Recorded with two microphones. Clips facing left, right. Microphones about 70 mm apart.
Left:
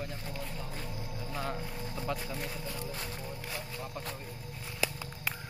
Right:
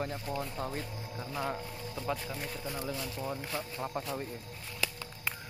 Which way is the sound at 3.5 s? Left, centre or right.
Right.